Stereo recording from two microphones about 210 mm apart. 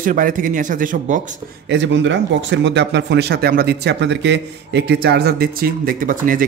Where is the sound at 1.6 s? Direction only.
55° right (ahead or behind).